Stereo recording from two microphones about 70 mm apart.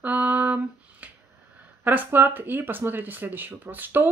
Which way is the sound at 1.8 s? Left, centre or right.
Right.